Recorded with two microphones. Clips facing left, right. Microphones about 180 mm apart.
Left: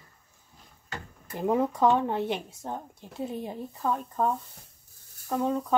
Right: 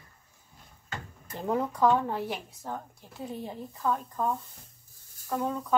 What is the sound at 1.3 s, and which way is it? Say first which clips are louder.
Speech: left 4 dB; 15° left (ahead or behind).